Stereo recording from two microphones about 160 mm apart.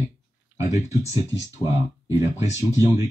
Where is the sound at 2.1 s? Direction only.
20° right (ahead or behind).